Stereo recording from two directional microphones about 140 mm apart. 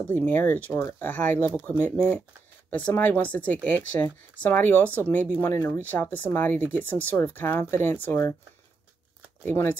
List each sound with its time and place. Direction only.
0.1 s speech: 15° left (ahead or behind)
9.4 s speech: 15° left (ahead or behind)